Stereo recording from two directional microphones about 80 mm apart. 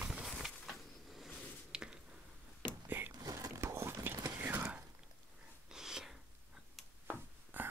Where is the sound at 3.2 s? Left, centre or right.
Right.